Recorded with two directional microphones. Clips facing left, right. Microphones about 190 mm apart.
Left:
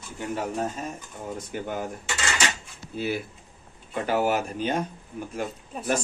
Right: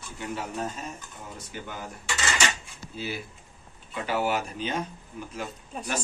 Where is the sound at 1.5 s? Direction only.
50° left (ahead or behind).